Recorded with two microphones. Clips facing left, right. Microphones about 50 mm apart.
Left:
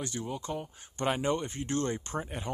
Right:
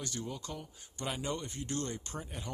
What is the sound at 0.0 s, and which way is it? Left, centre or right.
Speech, left.